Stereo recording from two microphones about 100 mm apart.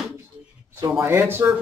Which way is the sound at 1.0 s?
25° right (ahead or behind).